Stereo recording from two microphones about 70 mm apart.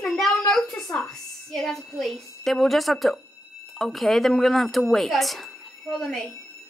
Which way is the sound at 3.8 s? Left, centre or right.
Centre.